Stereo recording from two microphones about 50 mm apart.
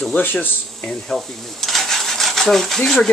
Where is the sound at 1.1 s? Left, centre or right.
Centre.